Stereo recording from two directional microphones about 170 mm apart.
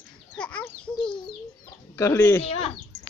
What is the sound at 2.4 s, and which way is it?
Speech, 35° left (ahead or behind).